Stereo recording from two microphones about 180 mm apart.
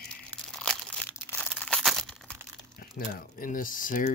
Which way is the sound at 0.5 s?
5° left (ahead or behind).